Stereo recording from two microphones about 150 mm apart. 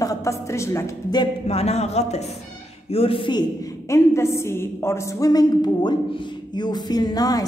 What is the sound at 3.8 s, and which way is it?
A woman's voice, 20° left (ahead or behind).